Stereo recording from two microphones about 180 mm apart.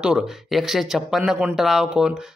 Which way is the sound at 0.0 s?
5° right (ahead or behind).